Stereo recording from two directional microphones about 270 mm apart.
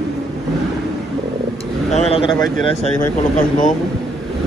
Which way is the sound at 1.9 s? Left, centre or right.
Left.